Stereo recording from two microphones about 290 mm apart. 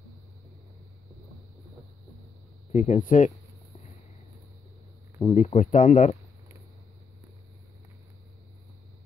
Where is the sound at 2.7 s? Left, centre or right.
Left.